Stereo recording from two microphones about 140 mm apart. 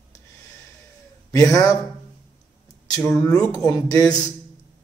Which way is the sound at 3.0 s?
20° left (ahead or behind).